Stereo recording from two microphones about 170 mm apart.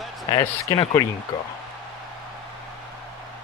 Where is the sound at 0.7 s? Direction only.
15° left (ahead or behind).